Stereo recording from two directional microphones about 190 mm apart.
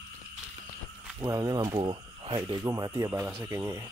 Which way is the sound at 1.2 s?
20° right (ahead or behind).